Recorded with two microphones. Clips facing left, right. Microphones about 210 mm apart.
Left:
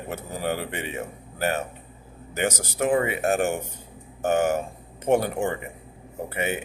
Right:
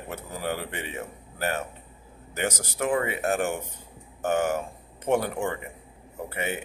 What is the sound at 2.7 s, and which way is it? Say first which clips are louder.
Speech: left 4 dB; 25° left (ahead or behind).